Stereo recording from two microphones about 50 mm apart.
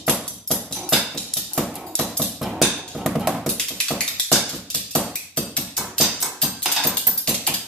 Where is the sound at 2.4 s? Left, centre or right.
Centre.